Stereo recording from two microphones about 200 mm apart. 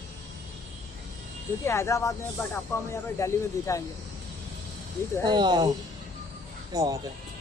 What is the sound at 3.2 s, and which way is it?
Speech, 15° left (ahead or behind).